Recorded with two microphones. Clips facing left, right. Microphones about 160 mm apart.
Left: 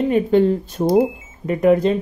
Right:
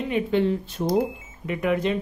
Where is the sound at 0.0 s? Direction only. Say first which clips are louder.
Left 7 dB; 40° left (ahead or behind).